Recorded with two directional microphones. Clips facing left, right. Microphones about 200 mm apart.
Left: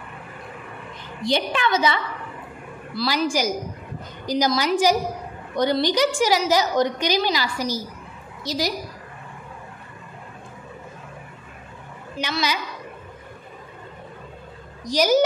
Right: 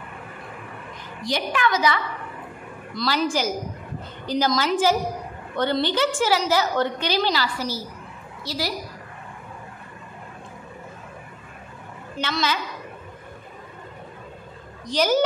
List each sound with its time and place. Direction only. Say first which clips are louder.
1.2 s a woman's voice: left 2 dB; 25° left (ahead or behind)
2.9 s a woman's voice: left 1 dB; 5° left (ahead or behind)
12.2 s a woman's voice: even; 15° left (ahead or behind)
14.9 s a woman's voice: left 2 dB; 10° left (ahead or behind)